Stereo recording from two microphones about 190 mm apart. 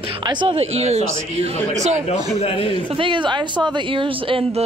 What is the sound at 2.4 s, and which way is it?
Speech, 30° left (ahead or behind).